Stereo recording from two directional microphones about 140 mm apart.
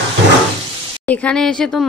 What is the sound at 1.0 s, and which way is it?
Speech, 5° left (ahead or behind).